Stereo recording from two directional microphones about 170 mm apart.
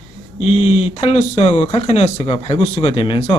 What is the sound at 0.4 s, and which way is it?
A man's voice, 35° left (ahead or behind).